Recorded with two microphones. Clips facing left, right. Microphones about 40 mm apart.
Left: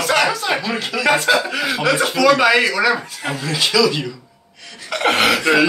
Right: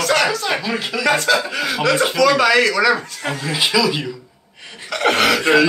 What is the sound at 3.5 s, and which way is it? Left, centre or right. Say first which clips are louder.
Speech: left 1 dB; centre.